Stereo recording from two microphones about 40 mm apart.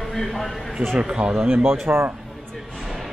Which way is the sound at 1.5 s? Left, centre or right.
Right.